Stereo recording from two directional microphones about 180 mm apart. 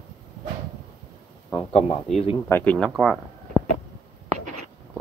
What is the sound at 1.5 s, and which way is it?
Speech, 35° left (ahead or behind).